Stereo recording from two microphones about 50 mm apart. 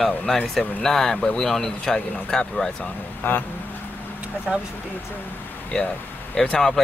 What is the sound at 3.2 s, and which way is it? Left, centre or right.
Speech, left.